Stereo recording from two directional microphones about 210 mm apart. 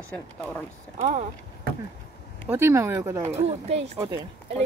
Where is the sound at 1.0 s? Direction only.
35° right (ahead or behind).